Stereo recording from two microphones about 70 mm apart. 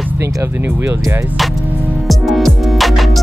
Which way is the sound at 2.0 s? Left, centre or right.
Centre.